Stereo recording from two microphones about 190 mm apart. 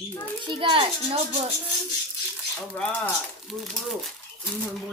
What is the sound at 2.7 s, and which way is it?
Speech, 5° left (ahead or behind).